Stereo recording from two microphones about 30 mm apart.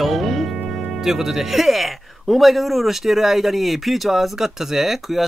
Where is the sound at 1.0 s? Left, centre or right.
Centre.